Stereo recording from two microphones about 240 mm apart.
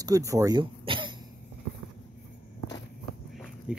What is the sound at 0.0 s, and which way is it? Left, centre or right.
Speech, centre.